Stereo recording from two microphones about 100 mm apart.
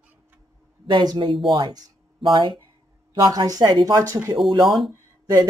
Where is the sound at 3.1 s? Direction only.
40° right (ahead or behind).